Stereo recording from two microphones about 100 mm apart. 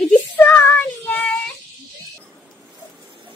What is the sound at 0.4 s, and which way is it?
Child singing, 15° left (ahead or behind).